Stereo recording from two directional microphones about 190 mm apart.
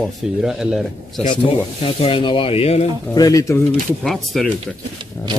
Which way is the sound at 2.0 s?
25° left (ahead or behind).